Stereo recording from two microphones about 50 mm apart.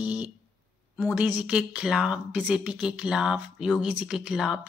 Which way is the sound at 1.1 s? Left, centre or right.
Right.